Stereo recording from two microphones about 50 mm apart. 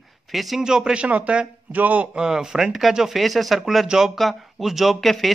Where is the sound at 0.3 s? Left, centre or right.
Centre; by 2.0 s right.